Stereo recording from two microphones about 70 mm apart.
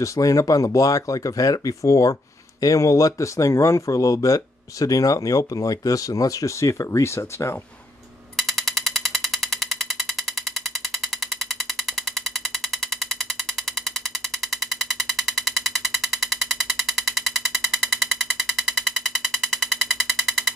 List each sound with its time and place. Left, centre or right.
0.0 s speech: left
8.4 s ratchet: centre
15.1 s a sound: centre